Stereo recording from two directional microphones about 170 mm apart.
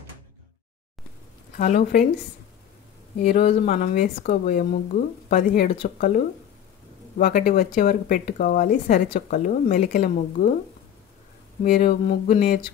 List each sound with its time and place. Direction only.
1.6 s speech: 55° left (ahead or behind)
3.2 s speech: 40° left (ahead or behind)
11.6 s speech: 50° left (ahead or behind)